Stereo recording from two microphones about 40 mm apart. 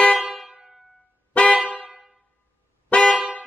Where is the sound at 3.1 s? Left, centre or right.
Centre.